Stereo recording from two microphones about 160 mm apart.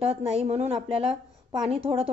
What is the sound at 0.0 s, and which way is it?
Speech, 40° right (ahead or behind).